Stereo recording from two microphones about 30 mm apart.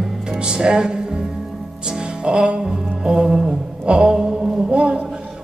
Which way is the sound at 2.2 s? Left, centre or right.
Right.